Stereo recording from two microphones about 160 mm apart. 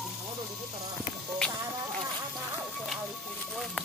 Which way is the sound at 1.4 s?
5° left (ahead or behind).